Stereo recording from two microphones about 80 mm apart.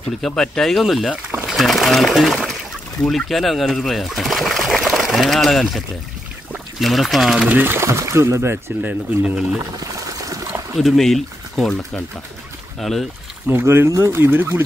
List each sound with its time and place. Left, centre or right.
0.2 s speech: centre
6.8 s speech: centre
7.4 s speech: right
7.8 s speech: right
9.2 s speech: centre
9.8 s water: right
10.8 s speech: centre
13.5 s speech: right